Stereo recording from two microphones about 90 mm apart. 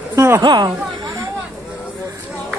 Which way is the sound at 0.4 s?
50° right (ahead or behind).